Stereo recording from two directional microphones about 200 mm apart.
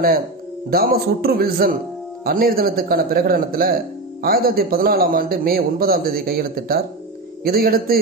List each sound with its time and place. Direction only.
0.7 s a man's voice: 50° right (ahead or behind)